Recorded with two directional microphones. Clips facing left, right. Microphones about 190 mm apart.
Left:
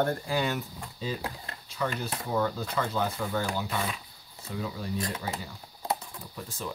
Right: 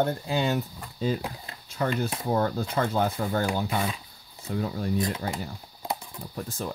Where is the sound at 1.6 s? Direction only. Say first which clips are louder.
Right 5 dB; 50° right (ahead or behind).